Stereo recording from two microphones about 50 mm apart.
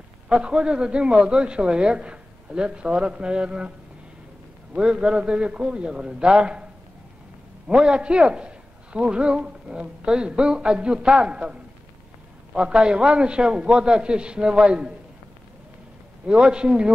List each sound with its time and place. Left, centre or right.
0.3 s a man's voice: centre
4.7 s a man's voice: centre
16.3 s a man's voice: centre